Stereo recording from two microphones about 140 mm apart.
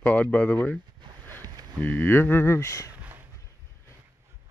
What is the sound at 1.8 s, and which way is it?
Speech, 15° left (ahead or behind).